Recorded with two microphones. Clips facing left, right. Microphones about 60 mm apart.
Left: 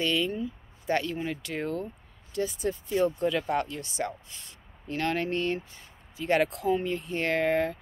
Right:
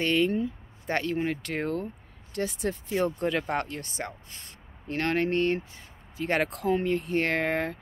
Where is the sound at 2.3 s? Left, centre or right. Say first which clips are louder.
Even; right.